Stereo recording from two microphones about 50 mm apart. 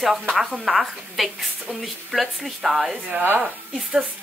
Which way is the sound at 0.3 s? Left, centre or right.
Centre.